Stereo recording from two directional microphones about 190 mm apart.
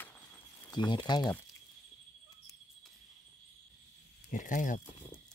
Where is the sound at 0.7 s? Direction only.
25° left (ahead or behind).